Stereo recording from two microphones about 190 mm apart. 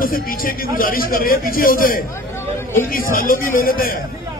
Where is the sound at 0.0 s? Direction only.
50° left (ahead or behind).